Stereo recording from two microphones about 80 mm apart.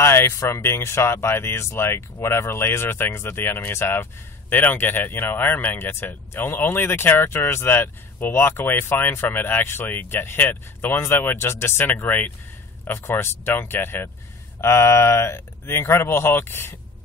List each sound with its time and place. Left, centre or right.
0.0 s speech: left